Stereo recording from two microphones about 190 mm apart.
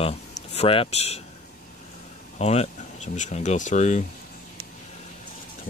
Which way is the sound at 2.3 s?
35° left (ahead or behind).